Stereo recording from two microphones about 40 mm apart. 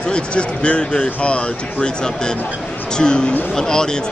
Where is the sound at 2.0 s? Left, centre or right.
Centre.